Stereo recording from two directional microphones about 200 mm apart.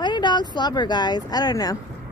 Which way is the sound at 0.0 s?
20° left (ahead or behind).